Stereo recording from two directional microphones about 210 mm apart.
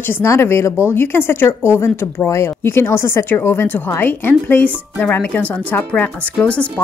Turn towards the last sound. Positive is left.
turn(degrees=5)  # may be behind; listen again after turning